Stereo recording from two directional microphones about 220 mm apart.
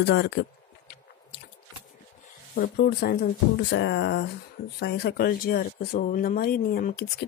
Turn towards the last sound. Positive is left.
turn(degrees=45)  # may be behind; listen again after turning